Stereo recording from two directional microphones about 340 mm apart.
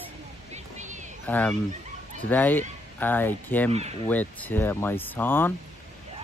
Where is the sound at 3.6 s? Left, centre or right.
Centre.